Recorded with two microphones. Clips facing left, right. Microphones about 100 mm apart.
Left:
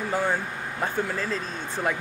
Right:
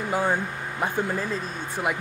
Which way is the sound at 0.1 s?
15° right (ahead or behind).